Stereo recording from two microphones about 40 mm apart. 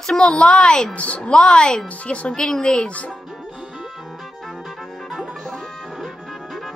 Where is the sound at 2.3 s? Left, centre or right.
Centre.